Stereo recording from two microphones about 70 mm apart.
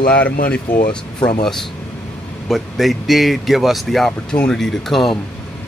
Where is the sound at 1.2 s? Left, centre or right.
Centre.